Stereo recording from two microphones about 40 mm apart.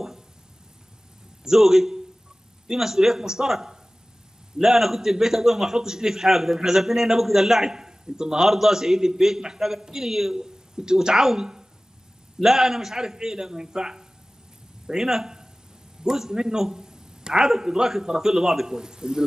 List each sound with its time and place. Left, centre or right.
1.4 s a man's voice: centre